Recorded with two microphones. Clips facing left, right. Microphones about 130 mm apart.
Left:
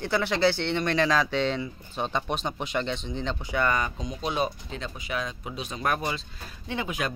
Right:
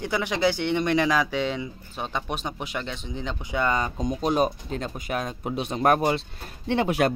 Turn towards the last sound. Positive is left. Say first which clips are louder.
# right 8 dB
turn(degrees=-65)  # may be behind; listen again after turning